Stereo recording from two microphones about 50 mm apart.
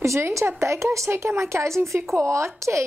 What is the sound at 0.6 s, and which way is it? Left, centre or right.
A woman's voice, right.